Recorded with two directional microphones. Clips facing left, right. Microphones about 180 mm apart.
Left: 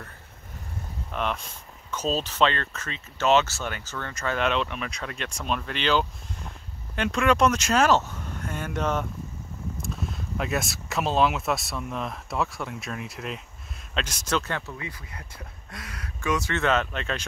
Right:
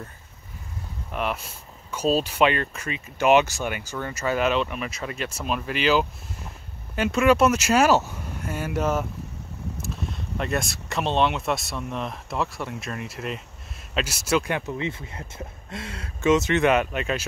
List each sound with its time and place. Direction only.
1.1 s speech: 5° right (ahead or behind)